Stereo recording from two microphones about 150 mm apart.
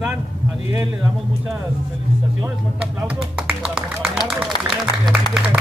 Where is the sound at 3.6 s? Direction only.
5° right (ahead or behind).